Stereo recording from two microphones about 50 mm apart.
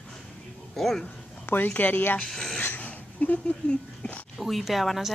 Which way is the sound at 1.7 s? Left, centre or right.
Left.